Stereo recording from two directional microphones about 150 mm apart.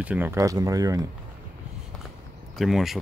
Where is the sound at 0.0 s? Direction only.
10° right (ahead or behind).